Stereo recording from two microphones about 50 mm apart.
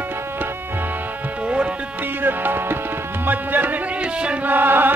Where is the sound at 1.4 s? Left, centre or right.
Right.